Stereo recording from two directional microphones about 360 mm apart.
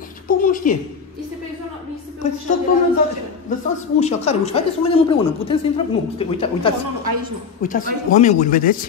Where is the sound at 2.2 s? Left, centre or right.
Centre.